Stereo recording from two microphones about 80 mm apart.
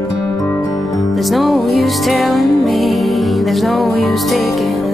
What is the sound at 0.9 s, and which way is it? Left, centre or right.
Music, centre.